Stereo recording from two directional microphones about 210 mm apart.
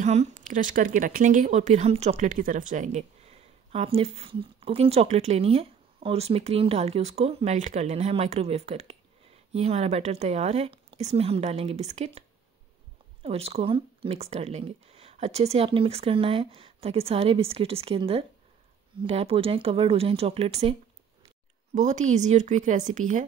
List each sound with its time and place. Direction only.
0.0 s speech: 35° right (ahead or behind)
21.7 s speech: 35° right (ahead or behind)